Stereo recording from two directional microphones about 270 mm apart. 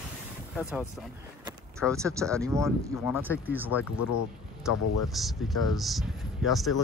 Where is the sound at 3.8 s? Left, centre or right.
Left.